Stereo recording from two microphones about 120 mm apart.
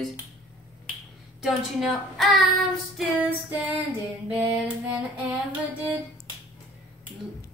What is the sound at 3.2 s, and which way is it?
Music, 15° right (ahead or behind).